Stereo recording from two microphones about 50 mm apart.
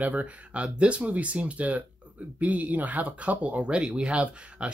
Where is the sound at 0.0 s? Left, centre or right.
Right.